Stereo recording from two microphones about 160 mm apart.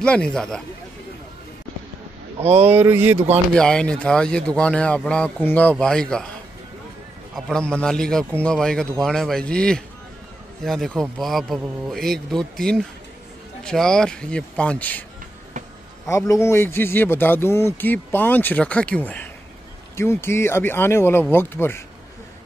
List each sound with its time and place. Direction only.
0.0 s speech: 5° left (ahead or behind)
2.4 s speech: 40° right (ahead or behind)
2.7 s speech: 15° right (ahead or behind)
3.5 s speech: 5° left (ahead or behind)
7.3 s speech: 5° left (ahead or behind)
16.1 s a man's voice: 20° left (ahead or behind)